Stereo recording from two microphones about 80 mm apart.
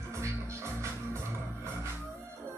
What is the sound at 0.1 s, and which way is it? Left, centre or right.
Music, right.